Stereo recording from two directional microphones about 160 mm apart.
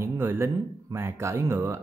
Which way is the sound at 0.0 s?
15° right (ahead or behind).